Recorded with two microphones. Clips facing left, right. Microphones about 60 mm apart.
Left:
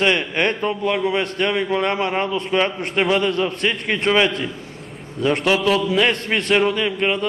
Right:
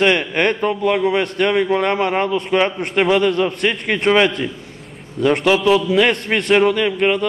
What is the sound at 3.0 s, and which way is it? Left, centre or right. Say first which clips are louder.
A man's voice: right 4 dB; right.